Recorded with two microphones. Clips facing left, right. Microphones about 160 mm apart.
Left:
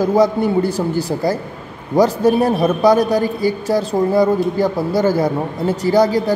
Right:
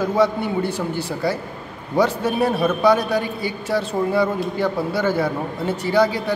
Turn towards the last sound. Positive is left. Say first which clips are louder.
# left 5 dB
turn(degrees=40)  # may be behind; listen again after turning